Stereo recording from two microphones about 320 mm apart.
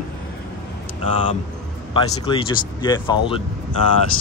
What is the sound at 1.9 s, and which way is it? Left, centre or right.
Speech, centre.